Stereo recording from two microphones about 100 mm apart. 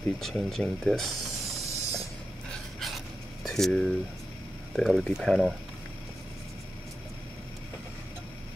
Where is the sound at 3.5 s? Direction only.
5° left (ahead or behind).